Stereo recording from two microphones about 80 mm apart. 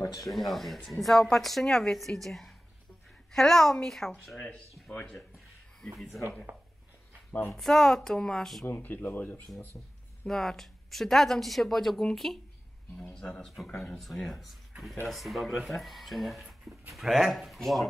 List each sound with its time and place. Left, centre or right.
0.0 s speech: left
0.3 s speech: centre
5.8 s speech: centre
7.5 s speech: centre
8.6 s speech: left
10.2 s speech: centre
13.9 s speech: centre